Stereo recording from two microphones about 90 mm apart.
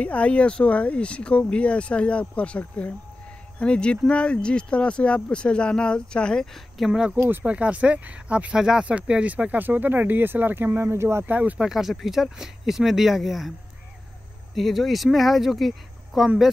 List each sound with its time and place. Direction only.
0.0 s speech: 15° left (ahead or behind)
6.9 s speech: 10° right (ahead or behind); by 11.2 s 30° right (ahead or behind)
11.2 s speech: 15° right (ahead or behind)
11.6 s speech: 5° right (ahead or behind)
14.5 s speech: centre (ahead or behind)